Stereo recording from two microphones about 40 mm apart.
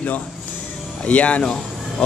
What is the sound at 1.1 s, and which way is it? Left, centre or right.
Speech, left.